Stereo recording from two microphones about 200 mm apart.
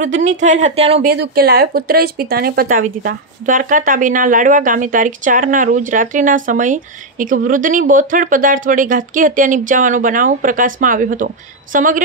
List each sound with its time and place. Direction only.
0.2 s speech: 35° right (ahead or behind)
1.0 s speech: 55° right (ahead or behind)